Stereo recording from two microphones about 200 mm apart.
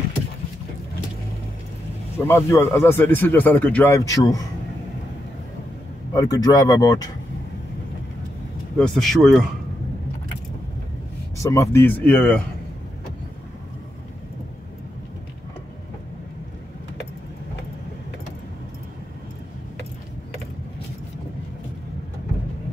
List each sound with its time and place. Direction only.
2.1 s speech: 15° left (ahead or behind)
6.1 s speech: 20° left (ahead or behind)
8.7 s speech: 5° left (ahead or behind)
11.5 s speech: 10° left (ahead or behind)